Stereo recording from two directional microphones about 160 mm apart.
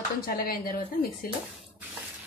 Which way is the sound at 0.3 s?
65° left (ahead or behind).